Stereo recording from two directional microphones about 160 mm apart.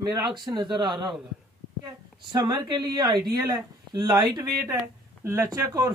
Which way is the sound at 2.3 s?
25° right (ahead or behind).